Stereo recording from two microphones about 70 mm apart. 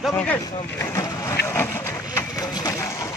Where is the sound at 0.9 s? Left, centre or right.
Left.